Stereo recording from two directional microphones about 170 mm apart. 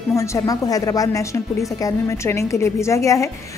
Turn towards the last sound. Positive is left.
turn(degrees=20)  # may be behind; listen again after turning